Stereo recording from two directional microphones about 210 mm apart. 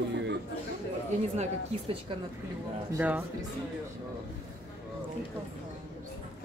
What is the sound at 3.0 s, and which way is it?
Speech, 5° right (ahead or behind).